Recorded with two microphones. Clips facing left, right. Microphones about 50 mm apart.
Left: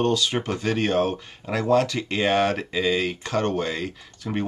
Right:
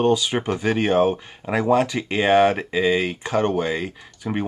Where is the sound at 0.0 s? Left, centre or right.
Centre.